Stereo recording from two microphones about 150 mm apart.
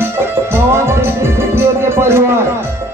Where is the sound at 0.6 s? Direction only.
15° right (ahead or behind).